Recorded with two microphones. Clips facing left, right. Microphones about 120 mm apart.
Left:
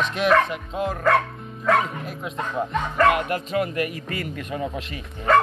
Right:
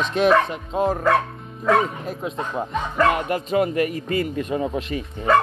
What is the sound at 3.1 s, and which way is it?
Speech, 35° right (ahead or behind).